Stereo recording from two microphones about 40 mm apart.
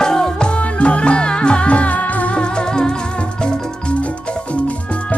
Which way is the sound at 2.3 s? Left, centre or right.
Left.